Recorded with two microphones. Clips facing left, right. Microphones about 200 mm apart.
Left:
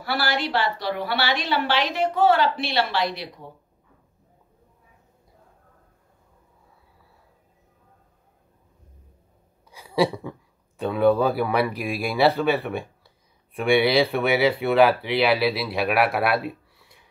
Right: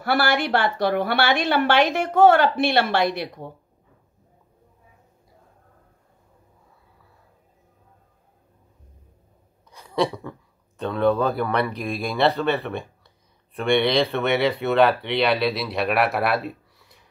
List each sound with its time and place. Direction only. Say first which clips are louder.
0.0 s a woman's voice: right 4 dB; 50° right (ahead or behind)
9.7 s a sound: left 1 dB; centre (ahead or behind)
10.8 s speech: left 1 dB; 5° left (ahead or behind)